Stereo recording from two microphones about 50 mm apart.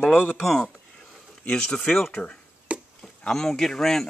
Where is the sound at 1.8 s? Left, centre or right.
Left.